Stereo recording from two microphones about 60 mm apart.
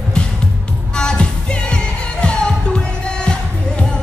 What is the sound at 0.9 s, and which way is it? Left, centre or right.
Music, centre.